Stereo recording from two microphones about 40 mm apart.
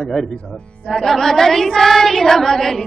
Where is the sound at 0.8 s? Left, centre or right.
Centre.